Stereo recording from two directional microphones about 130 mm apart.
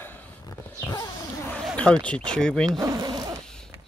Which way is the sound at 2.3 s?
5° left (ahead or behind).